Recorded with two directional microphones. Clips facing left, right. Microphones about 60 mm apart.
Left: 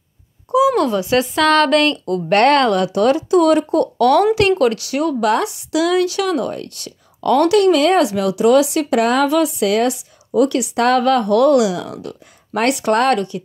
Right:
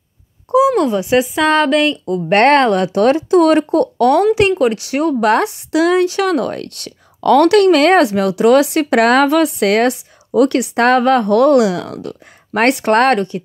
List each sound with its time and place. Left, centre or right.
0.7 s speech: right
2.3 s speech: right
4.4 s speech: right
6.2 s a woman's voice: right
8.9 s speech: right
9.2 s a woman's voice: right
10.6 s speech: right